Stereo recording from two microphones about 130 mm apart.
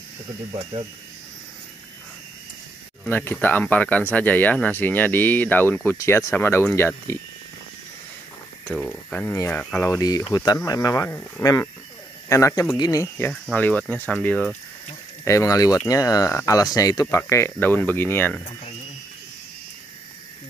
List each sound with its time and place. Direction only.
3.1 s speech: 15° left (ahead or behind)
8.6 s speech: centre (ahead or behind)
9.2 s speech: 15° left (ahead or behind)
9.8 s speech: 25° left (ahead or behind)
11.1 s speech: 15° left (ahead or behind)
13.3 s speech: 10° left (ahead or behind)
15.2 s speech: 25° left (ahead or behind)